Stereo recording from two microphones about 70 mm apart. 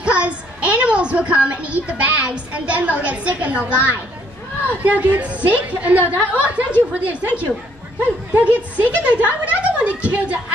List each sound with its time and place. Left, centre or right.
0.0 s a sound: centre
4.6 s speech: right
8.3 s speech: right